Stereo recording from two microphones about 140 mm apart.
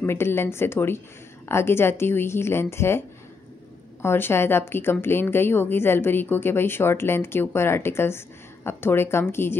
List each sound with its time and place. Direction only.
0.0 s a woman's voice: 15° left (ahead or behind)
4.0 s a woman's voice: 15° left (ahead or behind)